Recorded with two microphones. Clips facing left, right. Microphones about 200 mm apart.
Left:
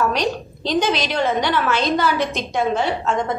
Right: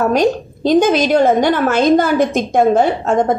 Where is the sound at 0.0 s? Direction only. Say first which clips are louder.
Right 7 dB; 50° right (ahead or behind).